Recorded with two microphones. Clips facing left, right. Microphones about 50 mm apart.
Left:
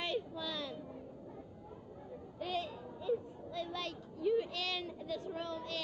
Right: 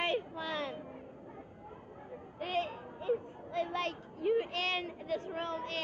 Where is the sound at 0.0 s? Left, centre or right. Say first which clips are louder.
Right 4 dB; right.